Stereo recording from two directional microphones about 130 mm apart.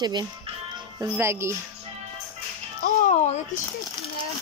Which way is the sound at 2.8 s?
70° left (ahead or behind).